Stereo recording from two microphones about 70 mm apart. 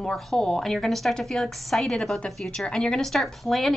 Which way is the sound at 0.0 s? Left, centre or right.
Centre.